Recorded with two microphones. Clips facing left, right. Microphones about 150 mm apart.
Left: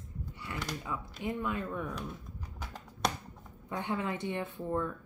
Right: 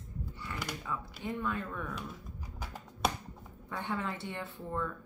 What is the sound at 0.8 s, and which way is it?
Speech, 15° left (ahead or behind).